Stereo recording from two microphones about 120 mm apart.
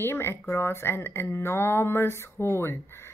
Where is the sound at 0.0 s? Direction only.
20° left (ahead or behind).